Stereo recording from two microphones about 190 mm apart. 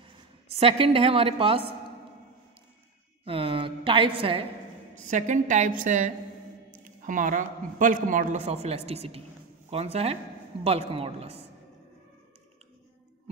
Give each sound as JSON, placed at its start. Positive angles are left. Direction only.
{"t": 0.6, "sound": "a woman's voice", "side_deg": -30}
{"t": 3.3, "sound": "a woman's voice", "side_deg": -30}
{"t": 5.1, "sound": "a woman's voice", "side_deg": -40}